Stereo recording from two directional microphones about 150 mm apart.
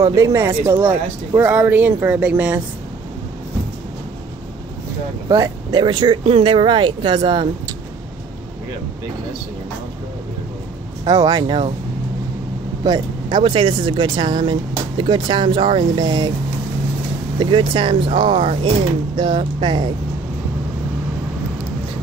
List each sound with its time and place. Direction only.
0.0 s speech: 20° right (ahead or behind)
5.3 s speech: 25° right (ahead or behind)
11.1 s speech: 25° right (ahead or behind)
12.8 s speech: 30° right (ahead or behind)
17.4 s speech: 35° right (ahead or behind)